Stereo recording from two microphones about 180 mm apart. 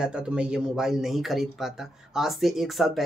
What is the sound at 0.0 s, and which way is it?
Speech, 5° right (ahead or behind).